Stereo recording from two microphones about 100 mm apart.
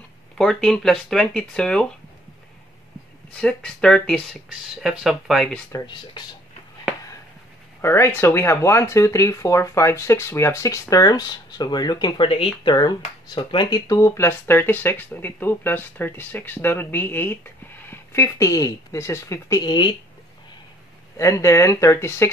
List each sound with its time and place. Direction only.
0.4 s speech: 5° left (ahead or behind)
3.3 s speech: 10° left (ahead or behind)
5.7 s a woman's voice: 35° left (ahead or behind)
7.8 s speech: 25° left (ahead or behind); by 12.4 s 60° left (ahead or behind)
12.6 s speech: 45° left (ahead or behind)
13.4 s a woman's voice: 55° left (ahead or behind); by 19.7 s 35° left (ahead or behind)
19.7 s speech: 50° left (ahead or behind)
21.2 s a woman's voice: 30° left (ahead or behind)